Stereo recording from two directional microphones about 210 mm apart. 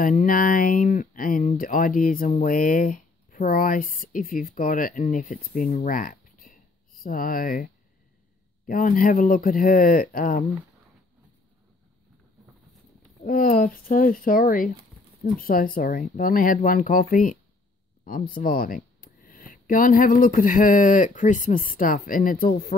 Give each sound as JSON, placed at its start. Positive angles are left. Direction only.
{"t": 0.0, "sound": "speech", "side_deg": 40}
{"t": 8.6, "sound": "speech", "side_deg": 40}
{"t": 13.2, "sound": "speech", "side_deg": 40}